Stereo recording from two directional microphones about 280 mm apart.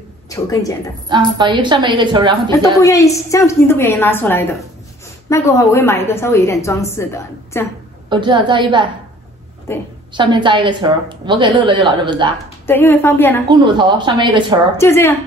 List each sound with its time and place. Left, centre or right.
0.3 s a woman's voice: centre
1.0 s a woman's voice: centre
2.8 s a woman's voice: centre
8.1 s a woman's voice: centre
10.1 s a woman's voice: centre
12.6 s a woman's voice: centre
13.5 s a woman's voice: centre
14.8 s a woman's voice: centre